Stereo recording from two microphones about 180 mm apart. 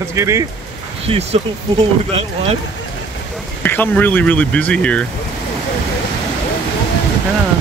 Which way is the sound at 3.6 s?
10° left (ahead or behind).